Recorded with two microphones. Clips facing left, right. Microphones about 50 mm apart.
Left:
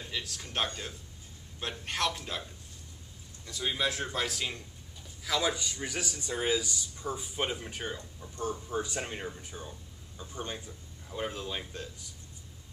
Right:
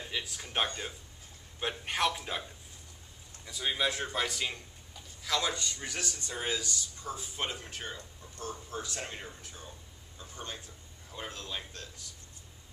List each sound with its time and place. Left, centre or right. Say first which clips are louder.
0.0 s a man's voice: right 1 dB; centre
3.4 s a man's voice: even; centre